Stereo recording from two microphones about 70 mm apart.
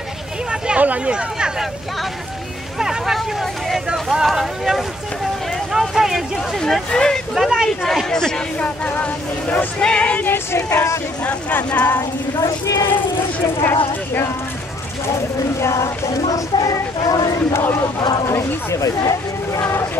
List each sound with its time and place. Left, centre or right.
0.5 s speech: centre
2.8 s speech: centre
6.6 s speech: centre
7.3 s speech: centre
10.3 s music: left
11.2 s speech: left
12.0 s speech: left
13.6 s music: left
15.6 s speech: left
16.5 s a sound: left
18.3 s speech: left